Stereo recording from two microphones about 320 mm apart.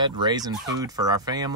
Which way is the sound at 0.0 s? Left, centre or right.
Centre.